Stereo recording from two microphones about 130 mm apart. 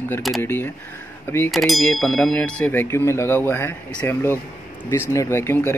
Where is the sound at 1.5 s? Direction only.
Centre (ahead or behind).